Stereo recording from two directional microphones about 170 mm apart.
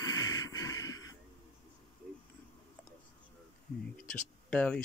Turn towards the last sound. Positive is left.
turn(degrees=5)  # may be behind; listen again after turning